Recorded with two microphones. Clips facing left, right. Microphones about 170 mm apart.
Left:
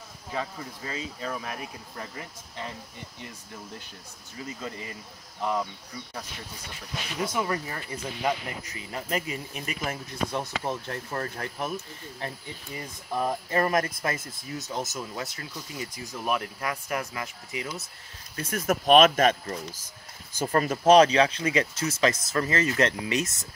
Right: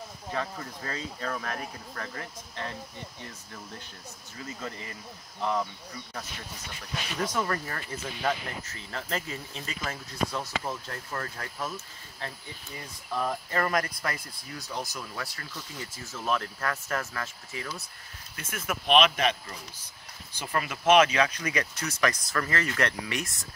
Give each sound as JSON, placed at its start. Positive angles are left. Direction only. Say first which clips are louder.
{"t": 0.3, "sound": "speech", "louder": "even", "side_deg": 15}
{"t": 4.6, "sound": "speech", "louder": "left 1 dB", "side_deg": 20}
{"t": 5.4, "sound": "speech", "louder": "left 1 dB", "side_deg": 10}
{"t": 7.2, "sound": "speech", "louder": "left 1 dB", "side_deg": 10}
{"t": 18.3, "sound": "speech", "louder": "left 8 dB", "side_deg": 35}